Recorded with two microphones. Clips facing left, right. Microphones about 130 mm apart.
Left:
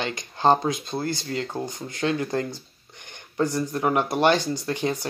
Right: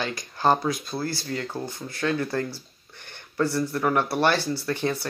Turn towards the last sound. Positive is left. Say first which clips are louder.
# even
turn(degrees=15)  # may be behind; listen again after turning